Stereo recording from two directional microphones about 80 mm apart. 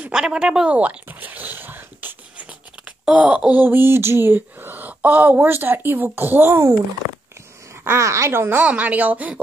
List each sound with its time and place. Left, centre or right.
0.0 s a sound: centre
3.1 s speech: centre
7.7 s speech: right